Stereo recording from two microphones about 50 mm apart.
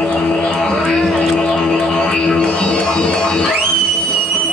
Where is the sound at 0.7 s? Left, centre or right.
Centre.